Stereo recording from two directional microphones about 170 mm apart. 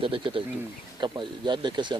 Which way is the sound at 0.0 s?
30° right (ahead or behind).